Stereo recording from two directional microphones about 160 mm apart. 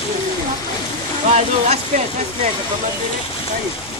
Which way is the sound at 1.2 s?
45° right (ahead or behind).